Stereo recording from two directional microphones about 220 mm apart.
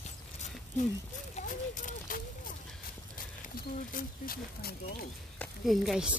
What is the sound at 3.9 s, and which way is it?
Speech, 40° left (ahead or behind).